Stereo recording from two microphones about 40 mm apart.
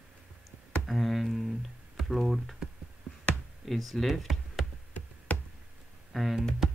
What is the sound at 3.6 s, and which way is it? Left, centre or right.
Speech, centre.